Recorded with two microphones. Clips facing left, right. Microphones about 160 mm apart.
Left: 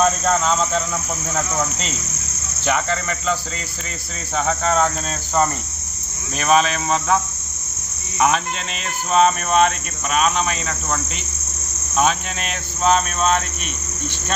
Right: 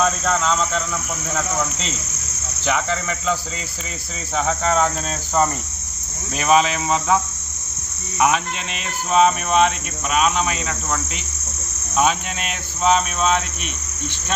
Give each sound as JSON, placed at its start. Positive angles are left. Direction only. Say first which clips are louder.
{"t": 0.0, "sound": "cricket", "louder": "left 2 dB", "side_deg": 10}
{"t": 2.6, "sound": "cricket", "louder": "left 1 dB", "side_deg": 0}
{"t": 4.4, "sound": "cricket", "louder": "even", "side_deg": 0}
{"t": 6.4, "sound": "cricket", "louder": "even", "side_deg": -15}
{"t": 9.1, "sound": "cricket", "louder": "even", "side_deg": -5}
{"t": 12.0, "sound": "cricket", "louder": "even", "side_deg": -10}